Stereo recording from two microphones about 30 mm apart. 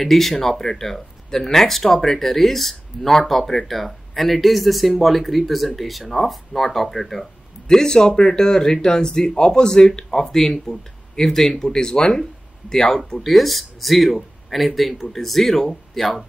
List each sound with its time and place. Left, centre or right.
0.0 s speech: centre; by 13.2 s left
13.2 s speech: centre
16.0 s speech: centre